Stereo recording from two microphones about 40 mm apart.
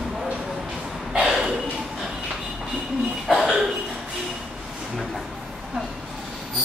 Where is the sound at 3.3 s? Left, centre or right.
Centre.